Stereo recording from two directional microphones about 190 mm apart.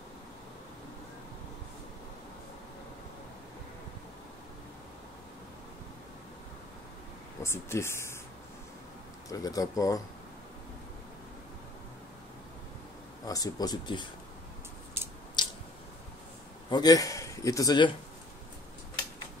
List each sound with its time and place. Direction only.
7.4 s speech: 15° left (ahead or behind)
9.3 s speech: 20° left (ahead or behind)
13.3 s a man's voice: 20° left (ahead or behind)
15.4 s squish: 25° left (ahead or behind)
16.7 s a man's voice: 20° left (ahead or behind)